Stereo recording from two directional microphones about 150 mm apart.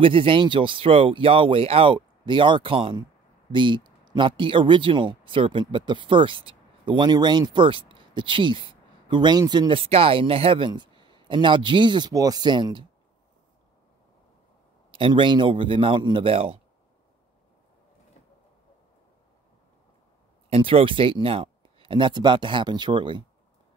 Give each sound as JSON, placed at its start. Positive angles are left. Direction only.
{"t": 0.0, "sound": "speech", "side_deg": -35}
{"t": 14.9, "sound": "speech", "side_deg": -35}
{"t": 20.4, "sound": "speech", "side_deg": -40}